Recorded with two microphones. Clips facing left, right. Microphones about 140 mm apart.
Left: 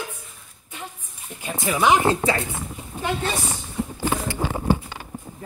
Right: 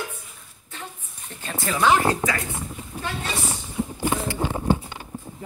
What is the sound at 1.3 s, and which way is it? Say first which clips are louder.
Speech: left 2 dB; 10° left (ahead or behind).